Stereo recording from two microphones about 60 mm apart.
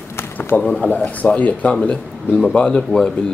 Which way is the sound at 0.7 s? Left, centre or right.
Left.